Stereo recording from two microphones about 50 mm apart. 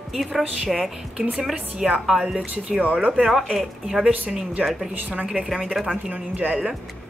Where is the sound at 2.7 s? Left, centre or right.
Right.